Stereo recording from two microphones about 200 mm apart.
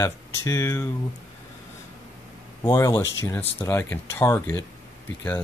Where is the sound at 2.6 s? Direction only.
15° left (ahead or behind).